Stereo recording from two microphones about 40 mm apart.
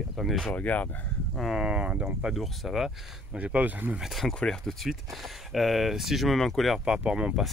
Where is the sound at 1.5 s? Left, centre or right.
Centre.